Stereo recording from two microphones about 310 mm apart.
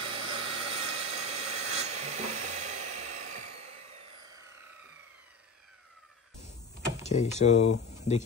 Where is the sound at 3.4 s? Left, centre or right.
Right.